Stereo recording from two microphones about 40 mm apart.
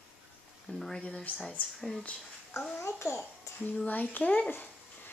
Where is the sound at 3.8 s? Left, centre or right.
Left.